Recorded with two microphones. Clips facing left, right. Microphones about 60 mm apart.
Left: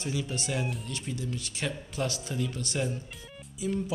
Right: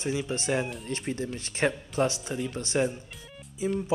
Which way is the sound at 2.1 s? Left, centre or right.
Right.